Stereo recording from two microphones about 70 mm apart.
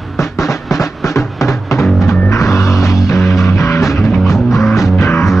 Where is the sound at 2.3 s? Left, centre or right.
Left.